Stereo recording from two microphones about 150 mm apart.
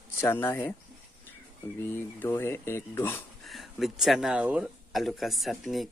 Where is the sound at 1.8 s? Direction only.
15° left (ahead or behind).